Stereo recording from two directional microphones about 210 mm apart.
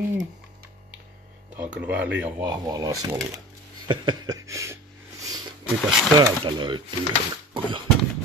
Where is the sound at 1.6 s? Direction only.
5° right (ahead or behind).